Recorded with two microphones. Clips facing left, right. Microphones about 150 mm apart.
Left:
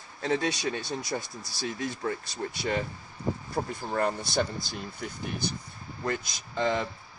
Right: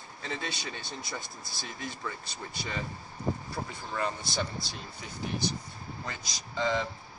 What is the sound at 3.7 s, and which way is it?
Speech, 50° left (ahead or behind).